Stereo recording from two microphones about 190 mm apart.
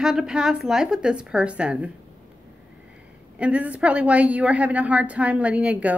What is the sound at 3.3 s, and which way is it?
A woman's voice, 5° right (ahead or behind).